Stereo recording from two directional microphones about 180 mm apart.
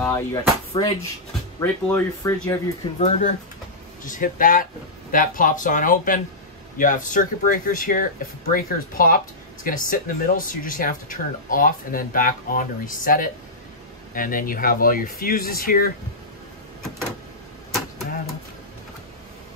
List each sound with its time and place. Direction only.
0.0 s speech: 20° left (ahead or behind)
3.0 s speech: 40° left (ahead or behind)